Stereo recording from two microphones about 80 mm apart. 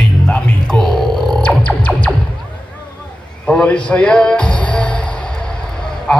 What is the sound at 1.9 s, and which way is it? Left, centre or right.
Music, centre.